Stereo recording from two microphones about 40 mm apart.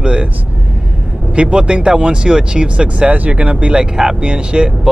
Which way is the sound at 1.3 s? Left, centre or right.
Right.